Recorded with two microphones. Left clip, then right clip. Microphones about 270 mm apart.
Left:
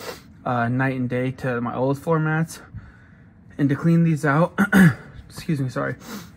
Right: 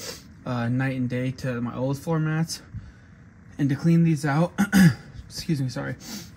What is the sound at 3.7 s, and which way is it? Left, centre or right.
Speech, centre.